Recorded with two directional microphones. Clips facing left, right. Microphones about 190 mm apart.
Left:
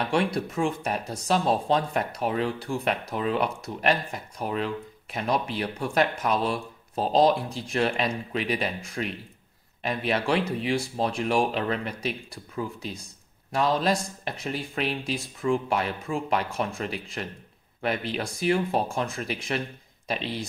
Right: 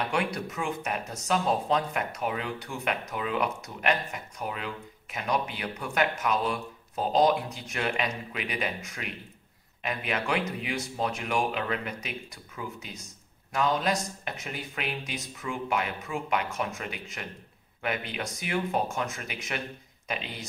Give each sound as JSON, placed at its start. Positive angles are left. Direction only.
{"t": 0.1, "sound": "speech", "side_deg": 30}